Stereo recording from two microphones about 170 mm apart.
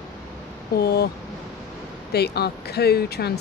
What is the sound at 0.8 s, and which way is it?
Speech, 65° left (ahead or behind).